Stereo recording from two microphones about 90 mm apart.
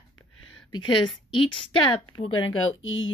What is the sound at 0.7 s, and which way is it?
A woman's voice, 60° left (ahead or behind).